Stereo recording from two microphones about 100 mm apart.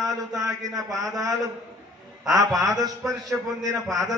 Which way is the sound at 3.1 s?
35° right (ahead or behind).